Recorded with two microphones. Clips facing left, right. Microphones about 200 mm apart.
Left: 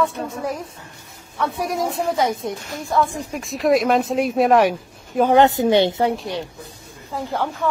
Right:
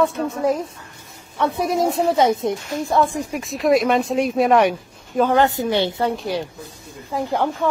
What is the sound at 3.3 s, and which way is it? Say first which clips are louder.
Speech: even; centre (ahead or behind).